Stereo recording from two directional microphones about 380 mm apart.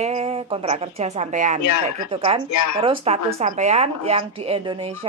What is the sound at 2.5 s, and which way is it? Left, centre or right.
Speech, left.